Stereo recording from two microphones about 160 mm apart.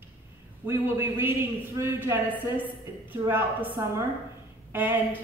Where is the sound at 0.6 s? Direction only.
15° right (ahead or behind).